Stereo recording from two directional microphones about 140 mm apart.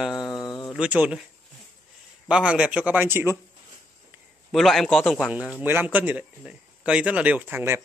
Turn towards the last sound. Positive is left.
turn(degrees=-15)  # may be behind; listen again after turning